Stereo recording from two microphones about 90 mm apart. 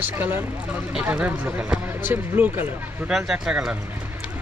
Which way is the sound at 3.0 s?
5° right (ahead or behind).